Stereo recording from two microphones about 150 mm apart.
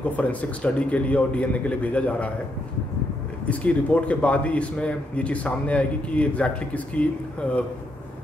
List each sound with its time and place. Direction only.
0.0 s a man's voice: 10° left (ahead or behind)
3.4 s a man's voice: 10° left (ahead or behind)